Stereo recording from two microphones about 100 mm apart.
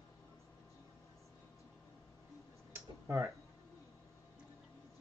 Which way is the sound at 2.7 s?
30° right (ahead or behind).